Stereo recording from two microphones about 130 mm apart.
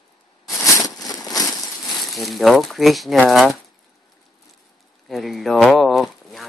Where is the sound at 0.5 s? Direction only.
25° left (ahead or behind).